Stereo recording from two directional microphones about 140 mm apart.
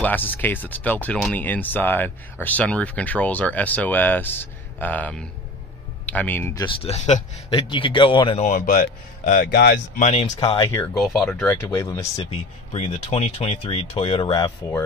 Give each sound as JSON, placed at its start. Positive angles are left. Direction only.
{"t": 0.0, "sound": "speech", "side_deg": 15}
{"t": 6.8, "sound": "speech", "side_deg": 50}
{"t": 7.5, "sound": "speech", "side_deg": 35}
{"t": 8.4, "sound": "speech", "side_deg": 65}
{"t": 9.9, "sound": "speech", "side_deg": 55}
{"t": 11.2, "sound": "speech", "side_deg": 15}
{"t": 12.2, "sound": "speech", "side_deg": 45}